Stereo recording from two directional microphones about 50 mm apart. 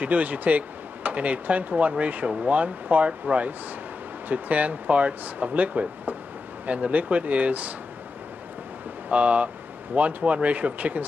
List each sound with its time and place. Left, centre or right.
0.0 s speech: right
9.1 s speech: right